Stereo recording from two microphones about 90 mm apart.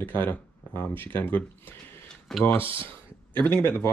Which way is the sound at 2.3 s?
5° left (ahead or behind).